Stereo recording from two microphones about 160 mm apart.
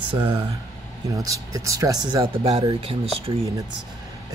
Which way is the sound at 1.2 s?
20° right (ahead or behind).